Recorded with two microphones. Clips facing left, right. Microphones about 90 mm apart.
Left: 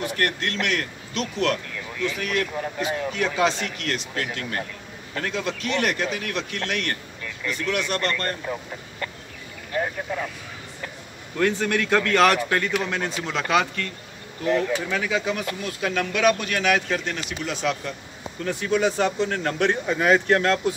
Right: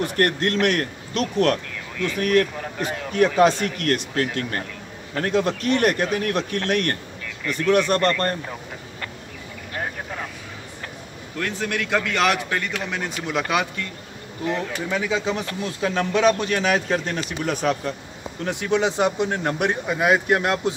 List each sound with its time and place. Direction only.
0.0 s a man's voice: 45° right (ahead or behind)
11.3 s a man's voice: centre (ahead or behind)
12.9 s speech: 10° right (ahead or behind)
14.9 s speech: 20° right (ahead or behind); by 17.9 s 45° right (ahead or behind)
18.4 s a man's voice: 20° right (ahead or behind)